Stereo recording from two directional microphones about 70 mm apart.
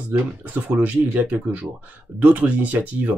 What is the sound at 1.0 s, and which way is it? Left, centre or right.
Speech, right.